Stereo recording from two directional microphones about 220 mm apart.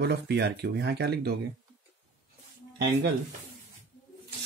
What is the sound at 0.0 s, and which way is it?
Speech, 50° right (ahead or behind).